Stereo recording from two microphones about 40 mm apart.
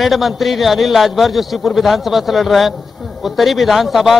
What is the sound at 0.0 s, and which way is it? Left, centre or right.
A man's voice, centre.